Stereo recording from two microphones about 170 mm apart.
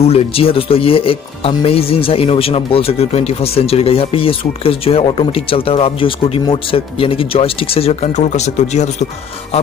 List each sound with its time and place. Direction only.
0.0 s speech: 35° left (ahead or behind)